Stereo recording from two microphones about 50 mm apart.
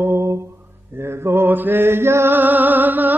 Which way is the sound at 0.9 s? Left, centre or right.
Right.